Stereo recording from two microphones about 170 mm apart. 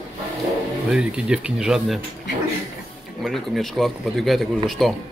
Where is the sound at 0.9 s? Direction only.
5° right (ahead or behind).